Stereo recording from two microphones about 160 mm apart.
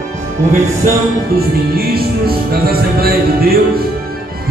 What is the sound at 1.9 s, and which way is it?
Music, 75° right (ahead or behind).